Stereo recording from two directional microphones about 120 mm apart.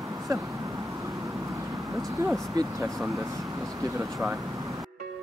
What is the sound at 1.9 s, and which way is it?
Speech, 25° right (ahead or behind).